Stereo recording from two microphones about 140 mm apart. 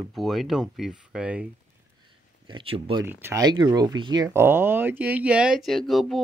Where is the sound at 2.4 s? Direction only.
40° right (ahead or behind).